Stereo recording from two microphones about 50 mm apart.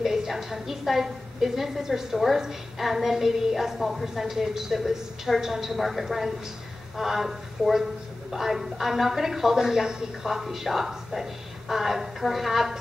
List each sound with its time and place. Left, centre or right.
0.0 s a woman's voice: centre